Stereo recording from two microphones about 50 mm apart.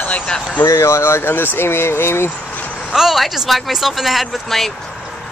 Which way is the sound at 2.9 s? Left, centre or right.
Centre.